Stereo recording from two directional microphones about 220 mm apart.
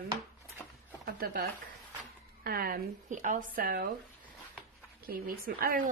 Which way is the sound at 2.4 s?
45° right (ahead or behind).